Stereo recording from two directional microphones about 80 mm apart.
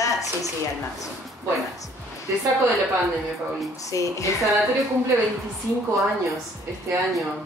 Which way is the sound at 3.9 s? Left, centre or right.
Left.